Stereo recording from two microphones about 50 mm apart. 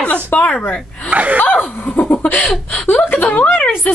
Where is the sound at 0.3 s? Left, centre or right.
Left.